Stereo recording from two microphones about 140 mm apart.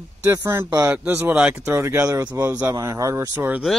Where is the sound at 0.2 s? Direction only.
20° right (ahead or behind).